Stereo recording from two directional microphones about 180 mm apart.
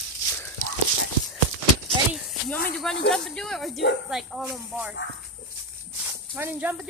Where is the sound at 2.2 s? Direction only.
5° left (ahead or behind).